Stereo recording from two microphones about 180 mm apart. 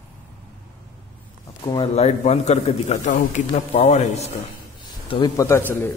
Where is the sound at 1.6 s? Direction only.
30° left (ahead or behind).